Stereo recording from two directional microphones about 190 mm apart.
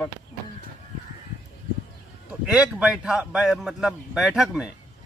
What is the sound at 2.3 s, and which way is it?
A man's voice, 5° right (ahead or behind).